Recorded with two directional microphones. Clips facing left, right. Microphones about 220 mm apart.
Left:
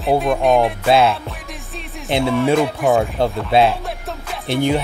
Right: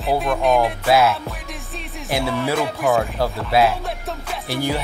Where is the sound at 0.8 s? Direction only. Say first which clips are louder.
Left 2 dB; 25° left (ahead or behind).